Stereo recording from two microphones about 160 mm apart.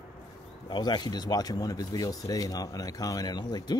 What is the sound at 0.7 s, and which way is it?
Speech, 25° left (ahead or behind).